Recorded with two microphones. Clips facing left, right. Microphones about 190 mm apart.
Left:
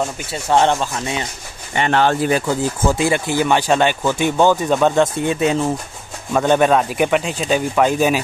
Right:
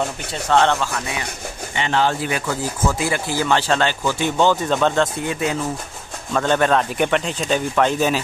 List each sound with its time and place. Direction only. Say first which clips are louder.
0.3 s speech: left 2 dB; 15° left (ahead or behind)
1.8 s speech: left 4 dB; 60° left (ahead or behind)
2.4 s speech: left 4 dB; 25° left (ahead or behind)
5.2 s speech: left 5 dB; 25° left (ahead or behind)